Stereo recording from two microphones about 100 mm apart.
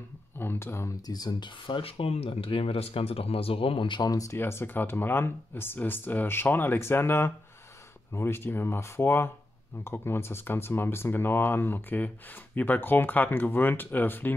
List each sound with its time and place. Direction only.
0.4 s speech: 20° left (ahead or behind)
1.0 s speech: 40° left (ahead or behind)
1.8 s speech: 70° left (ahead or behind); by 4.1 s 55° left (ahead or behind)
4.1 s speech: 35° left (ahead or behind)
4.4 s speech: 25° left (ahead or behind)